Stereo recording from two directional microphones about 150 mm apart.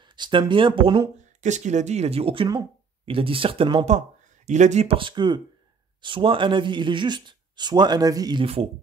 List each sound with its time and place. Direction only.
0.0 s speech: 30° right (ahead or behind)
1.4 s speech: 50° right (ahead or behind)
4.5 s speech: 50° right (ahead or behind)